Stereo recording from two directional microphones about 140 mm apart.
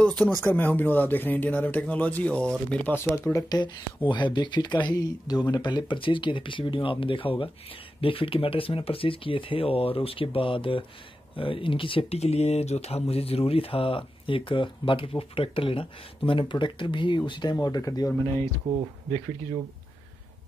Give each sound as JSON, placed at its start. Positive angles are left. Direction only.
{"t": 0.0, "sound": "speech", "side_deg": 10}
{"t": 3.3, "sound": "speech", "side_deg": 30}